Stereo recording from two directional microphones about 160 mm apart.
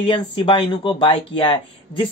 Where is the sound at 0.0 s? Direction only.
30° left (ahead or behind).